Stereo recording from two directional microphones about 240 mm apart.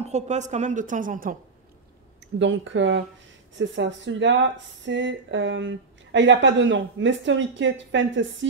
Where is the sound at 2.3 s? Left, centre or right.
Right.